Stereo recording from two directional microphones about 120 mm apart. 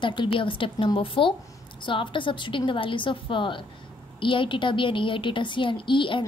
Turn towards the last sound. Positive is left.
turn(degrees=45)  # may be behind; listen again after turning